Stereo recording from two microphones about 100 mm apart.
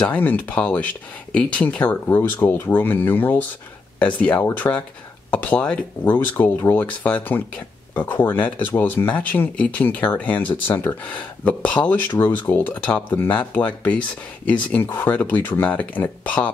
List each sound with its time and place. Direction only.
0.0 s speech: 15° left (ahead or behind)